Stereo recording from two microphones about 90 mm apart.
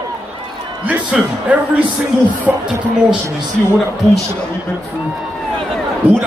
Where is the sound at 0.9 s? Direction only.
15° right (ahead or behind).